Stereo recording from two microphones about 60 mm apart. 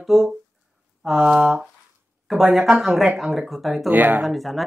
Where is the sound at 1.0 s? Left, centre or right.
Centre.